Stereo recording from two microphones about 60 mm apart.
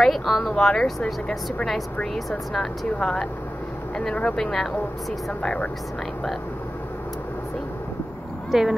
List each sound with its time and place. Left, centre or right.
0.0 s speech: centre
2.1 s speech: centre
8.5 s speech: centre